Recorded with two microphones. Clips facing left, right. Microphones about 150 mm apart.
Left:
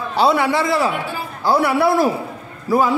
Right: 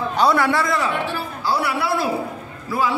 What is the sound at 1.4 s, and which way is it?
A man's voice, 50° left (ahead or behind).